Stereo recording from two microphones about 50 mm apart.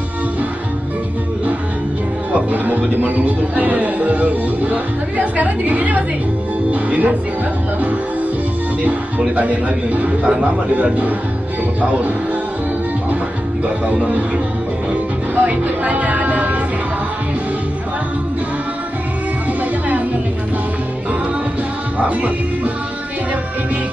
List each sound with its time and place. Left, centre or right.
2.3 s music: right
6.7 s speech: right
9.3 s a man's voice: right
15.3 s speech: right
22.0 s speech: right